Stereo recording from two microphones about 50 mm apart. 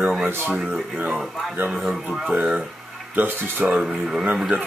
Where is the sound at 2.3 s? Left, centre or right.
Right.